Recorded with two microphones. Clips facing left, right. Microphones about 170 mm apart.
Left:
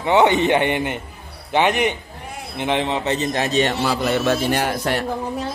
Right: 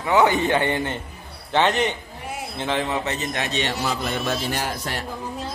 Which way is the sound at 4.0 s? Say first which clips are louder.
Left 7 dB; 80° left.